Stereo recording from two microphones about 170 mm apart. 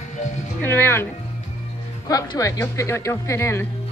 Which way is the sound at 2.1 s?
20° left (ahead or behind).